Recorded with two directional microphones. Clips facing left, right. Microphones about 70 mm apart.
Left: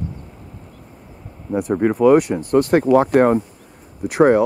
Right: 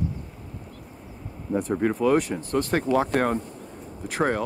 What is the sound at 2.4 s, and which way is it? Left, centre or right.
Speech, left.